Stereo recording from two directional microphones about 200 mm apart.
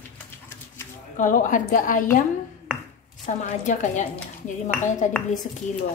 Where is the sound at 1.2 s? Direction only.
40° left (ahead or behind).